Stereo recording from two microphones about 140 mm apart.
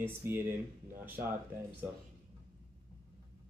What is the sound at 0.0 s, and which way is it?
Speech, 15° right (ahead or behind).